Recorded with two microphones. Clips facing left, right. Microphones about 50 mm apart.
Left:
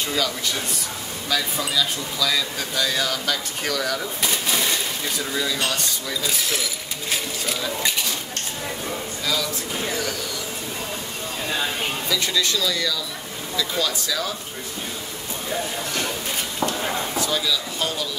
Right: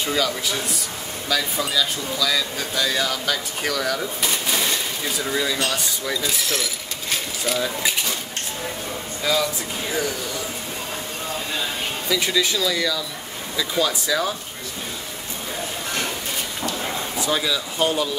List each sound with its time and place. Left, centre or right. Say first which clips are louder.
0.0 s speech: right 2 dB; centre
9.2 s speech: right 5 dB; centre
12.1 s speech: right 3 dB; centre
17.3 s speech: right 1 dB; right